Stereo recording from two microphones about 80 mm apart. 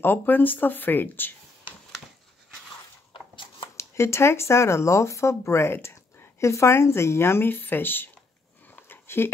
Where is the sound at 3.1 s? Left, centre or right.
Left.